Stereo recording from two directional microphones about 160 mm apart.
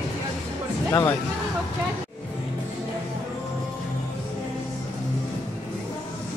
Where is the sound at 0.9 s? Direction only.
20° left (ahead or behind).